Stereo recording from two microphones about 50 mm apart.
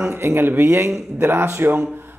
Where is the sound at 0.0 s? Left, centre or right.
Right.